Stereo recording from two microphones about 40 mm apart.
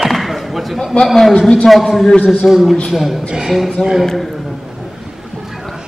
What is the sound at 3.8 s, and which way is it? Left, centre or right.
Speech, left.